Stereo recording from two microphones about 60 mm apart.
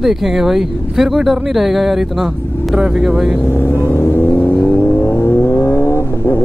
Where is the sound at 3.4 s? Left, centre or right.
Left.